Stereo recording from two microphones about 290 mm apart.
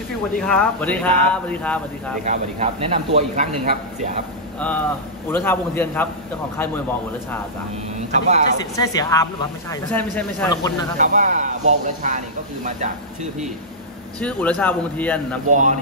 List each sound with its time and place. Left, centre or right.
0.4 s speech: centre
2.2 s a man's voice: right
4.6 s speech: centre
8.1 s a man's voice: right
8.7 s speech: centre
11.0 s a man's voice: right
14.2 s speech: centre
15.4 s a man's voice: right